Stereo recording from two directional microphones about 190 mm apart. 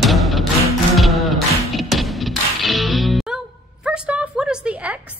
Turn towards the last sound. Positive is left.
turn(degrees=-5)  # may be behind; listen again after turning